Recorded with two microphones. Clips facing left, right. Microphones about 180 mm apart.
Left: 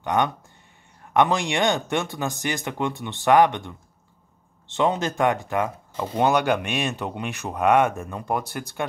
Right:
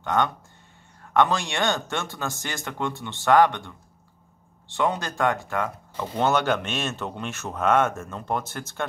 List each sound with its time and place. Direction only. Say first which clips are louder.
0.0 s speech: left 1 dB; 15° left (ahead or behind)